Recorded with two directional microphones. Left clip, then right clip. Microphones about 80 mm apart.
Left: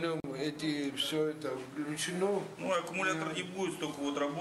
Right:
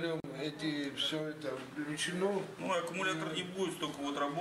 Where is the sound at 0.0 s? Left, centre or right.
Left.